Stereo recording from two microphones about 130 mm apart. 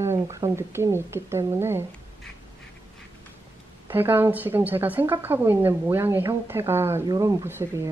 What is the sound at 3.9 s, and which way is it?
A woman's voice, 15° right (ahead or behind).